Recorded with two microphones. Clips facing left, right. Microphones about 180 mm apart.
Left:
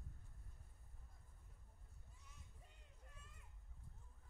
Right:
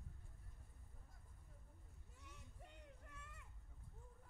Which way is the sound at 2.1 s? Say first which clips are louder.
Right 7 dB; 70° right (ahead or behind).